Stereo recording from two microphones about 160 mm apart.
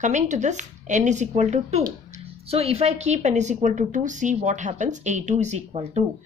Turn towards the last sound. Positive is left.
turn(degrees=-40)  # may be behind; listen again after turning